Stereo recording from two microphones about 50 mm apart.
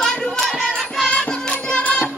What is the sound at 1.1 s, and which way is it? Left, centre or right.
Music, centre.